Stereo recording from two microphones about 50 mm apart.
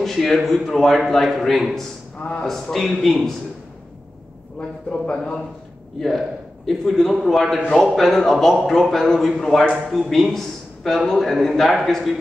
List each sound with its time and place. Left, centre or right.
0.0 s a man's voice: centre
4.6 s a man's voice: centre
5.9 s a man's voice: centre